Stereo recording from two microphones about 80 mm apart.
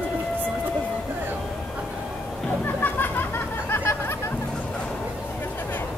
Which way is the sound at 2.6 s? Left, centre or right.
Left.